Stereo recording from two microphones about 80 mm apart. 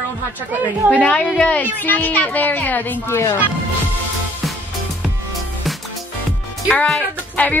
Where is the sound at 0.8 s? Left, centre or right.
Centre.